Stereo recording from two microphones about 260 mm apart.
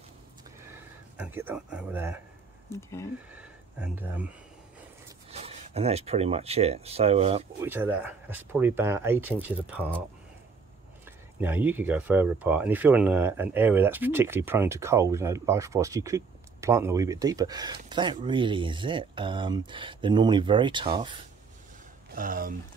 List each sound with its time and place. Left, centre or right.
0.7 s speech: centre
2.7 s speech: centre
3.3 s speech: centre
5.3 s speech: right
7.6 s speech: centre
11.1 s speech: centre
22.1 s speech: right